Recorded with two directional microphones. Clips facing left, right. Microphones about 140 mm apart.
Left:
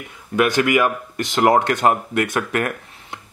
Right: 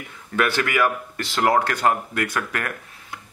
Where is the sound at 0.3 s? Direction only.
15° left (ahead or behind).